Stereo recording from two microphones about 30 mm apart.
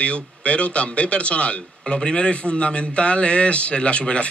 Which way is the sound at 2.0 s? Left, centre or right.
Left.